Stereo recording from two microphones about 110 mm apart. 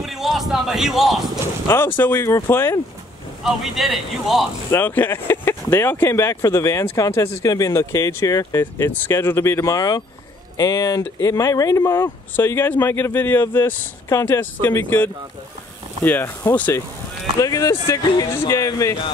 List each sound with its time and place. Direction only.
0.0 s a sound: centre (ahead or behind)
1.7 s speech: 20° left (ahead or behind)
3.4 s speech: centre (ahead or behind)
4.6 s speech: 20° left (ahead or behind)
17.4 s speech: 30° left (ahead or behind)